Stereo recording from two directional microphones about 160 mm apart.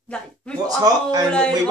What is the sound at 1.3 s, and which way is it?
Speech, 5° left (ahead or behind).